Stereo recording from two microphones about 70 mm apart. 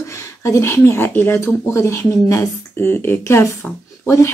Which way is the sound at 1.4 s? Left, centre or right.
Left.